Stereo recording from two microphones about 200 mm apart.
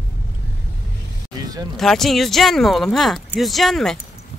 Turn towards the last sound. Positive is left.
turn(degrees=0)  # may be behind; listen again after turning